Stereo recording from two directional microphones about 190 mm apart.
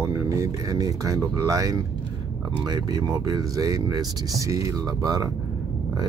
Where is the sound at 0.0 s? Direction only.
15° right (ahead or behind).